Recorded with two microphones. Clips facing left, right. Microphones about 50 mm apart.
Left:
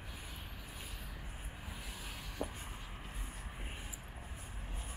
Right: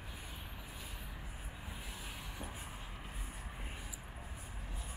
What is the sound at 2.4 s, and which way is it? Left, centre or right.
Vehicle, left.